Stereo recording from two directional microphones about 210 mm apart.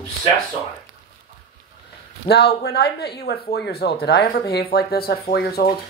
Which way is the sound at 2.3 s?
50° left (ahead or behind).